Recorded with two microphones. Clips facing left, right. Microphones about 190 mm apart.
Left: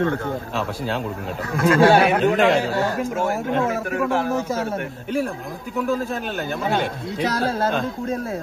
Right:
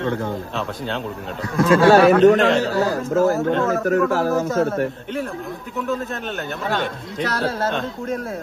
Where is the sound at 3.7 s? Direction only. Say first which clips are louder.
Right 4 dB; 40° right (ahead or behind).